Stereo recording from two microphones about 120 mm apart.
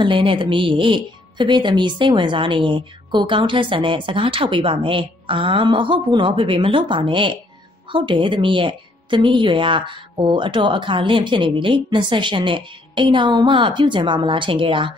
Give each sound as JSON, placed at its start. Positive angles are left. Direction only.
{"t": 0.0, "sound": "speech", "side_deg": -45}